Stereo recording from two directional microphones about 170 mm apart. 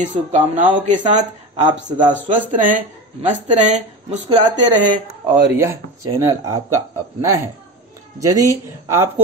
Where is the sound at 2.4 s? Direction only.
50° right (ahead or behind).